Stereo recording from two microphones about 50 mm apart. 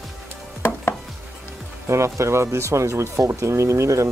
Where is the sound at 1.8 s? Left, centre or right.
Right.